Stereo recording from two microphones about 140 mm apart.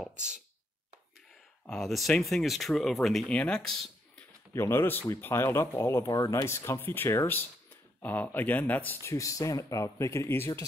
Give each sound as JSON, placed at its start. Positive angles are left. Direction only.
{"t": 0.0, "sound": "speech", "side_deg": -5}
{"t": 1.7, "sound": "speech", "side_deg": 0}
{"t": 4.6, "sound": "speech", "side_deg": 15}